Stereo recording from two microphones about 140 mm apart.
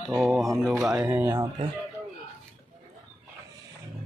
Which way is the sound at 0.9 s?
15° right (ahead or behind).